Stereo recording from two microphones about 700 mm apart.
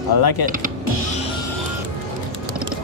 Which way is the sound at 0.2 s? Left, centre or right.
Left.